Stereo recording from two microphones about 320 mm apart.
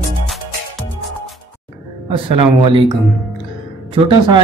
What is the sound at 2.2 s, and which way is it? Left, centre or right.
Speech, centre.